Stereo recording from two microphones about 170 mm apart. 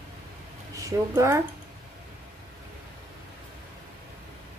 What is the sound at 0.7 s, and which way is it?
Speech, 15° right (ahead or behind).